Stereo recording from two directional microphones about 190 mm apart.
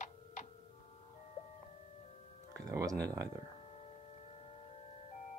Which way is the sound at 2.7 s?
20° right (ahead or behind).